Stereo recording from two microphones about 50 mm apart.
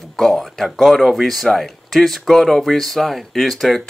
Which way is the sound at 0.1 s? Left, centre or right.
Centre.